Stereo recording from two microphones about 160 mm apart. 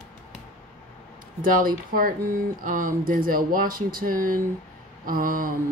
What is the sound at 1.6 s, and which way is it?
Speech, 60° right (ahead or behind).